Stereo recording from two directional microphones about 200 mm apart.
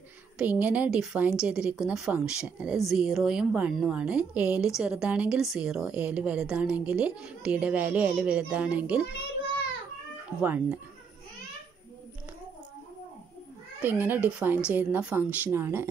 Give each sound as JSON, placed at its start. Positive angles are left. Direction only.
{"t": 0.4, "sound": "a woman's voice", "side_deg": -5}
{"t": 10.4, "sound": "a woman's voice", "side_deg": -10}
{"t": 13.7, "sound": "a woman's voice", "side_deg": -10}